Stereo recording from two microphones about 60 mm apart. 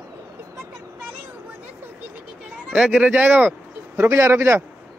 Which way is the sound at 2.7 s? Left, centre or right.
Centre.